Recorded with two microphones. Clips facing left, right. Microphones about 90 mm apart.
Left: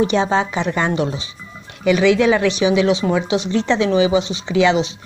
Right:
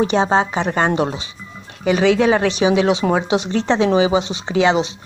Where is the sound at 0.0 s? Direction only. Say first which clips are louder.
Right 1 dB; 35° right (ahead or behind).